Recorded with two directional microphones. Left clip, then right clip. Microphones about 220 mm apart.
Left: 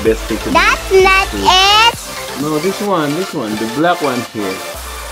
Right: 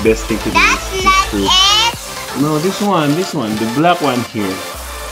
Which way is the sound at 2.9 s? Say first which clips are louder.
Right 3 dB; centre (ahead or behind).